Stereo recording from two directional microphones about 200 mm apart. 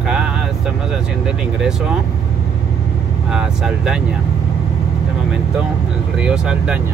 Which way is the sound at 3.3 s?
5° right (ahead or behind).